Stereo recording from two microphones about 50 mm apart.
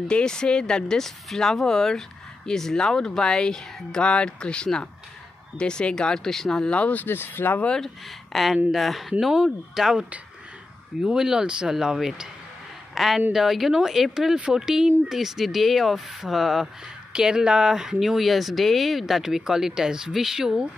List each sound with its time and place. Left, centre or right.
0.1 s speech: centre
6.7 s speech: left
7.1 s speech: left
7.8 s speech: centre
9.3 s speech: centre
18.0 s speech: centre